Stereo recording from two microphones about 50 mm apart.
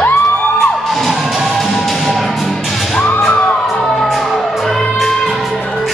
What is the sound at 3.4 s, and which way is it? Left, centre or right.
Emergency vehicle, centre.